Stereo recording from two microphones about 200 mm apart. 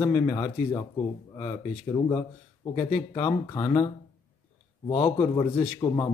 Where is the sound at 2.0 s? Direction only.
20° left (ahead or behind).